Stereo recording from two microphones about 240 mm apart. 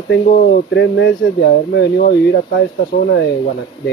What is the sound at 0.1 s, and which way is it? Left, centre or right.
Speech, left.